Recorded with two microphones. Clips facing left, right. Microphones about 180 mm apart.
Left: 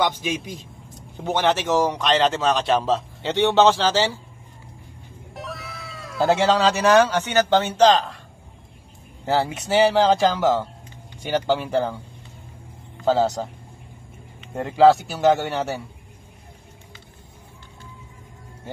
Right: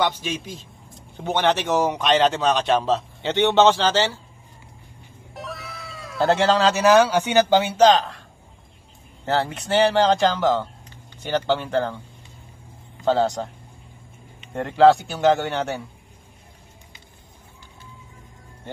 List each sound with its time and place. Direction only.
0.0 s speech: 15° left (ahead or behind)
1.3 s speech: 5° left (ahead or behind)
5.3 s speech: centre (ahead or behind)
9.2 s speech: 10° left (ahead or behind)
13.0 s speech: centre (ahead or behind)
14.5 s speech: 5° left (ahead or behind)